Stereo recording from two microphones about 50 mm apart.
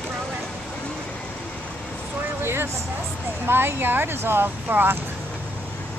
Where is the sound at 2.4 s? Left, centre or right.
Right.